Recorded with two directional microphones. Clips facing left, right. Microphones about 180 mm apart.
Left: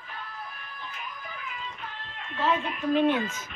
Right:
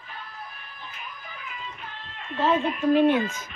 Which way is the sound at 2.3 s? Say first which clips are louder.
Right 4 dB; 25° right (ahead or behind).